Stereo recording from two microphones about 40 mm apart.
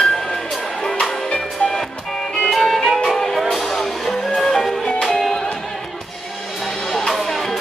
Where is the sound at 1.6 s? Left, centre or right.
Left.